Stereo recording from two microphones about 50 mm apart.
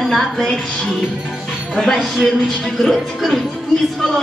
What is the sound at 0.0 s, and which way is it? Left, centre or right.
Music, centre.